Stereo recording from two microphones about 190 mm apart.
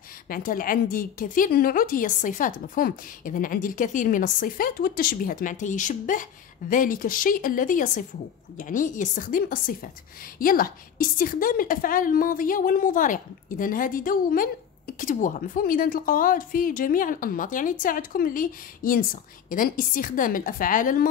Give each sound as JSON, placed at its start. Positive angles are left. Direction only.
{"t": 0.3, "sound": "a woman's voice", "side_deg": 45}